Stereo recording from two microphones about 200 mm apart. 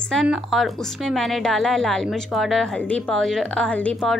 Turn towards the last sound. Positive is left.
turn(degrees=5)  # may be behind; listen again after turning